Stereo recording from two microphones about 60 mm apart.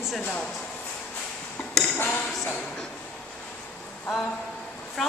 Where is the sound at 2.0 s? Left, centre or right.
Left.